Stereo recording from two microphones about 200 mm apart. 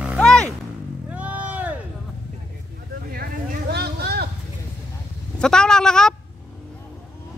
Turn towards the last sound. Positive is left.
turn(degrees=5)  # may be behind; listen again after turning